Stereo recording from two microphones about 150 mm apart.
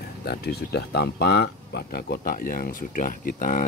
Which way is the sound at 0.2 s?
90° left.